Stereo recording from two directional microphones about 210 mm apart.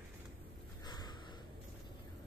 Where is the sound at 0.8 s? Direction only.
20° left (ahead or behind).